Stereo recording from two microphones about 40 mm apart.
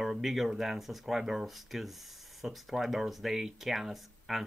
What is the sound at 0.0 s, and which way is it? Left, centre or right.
Speech, centre.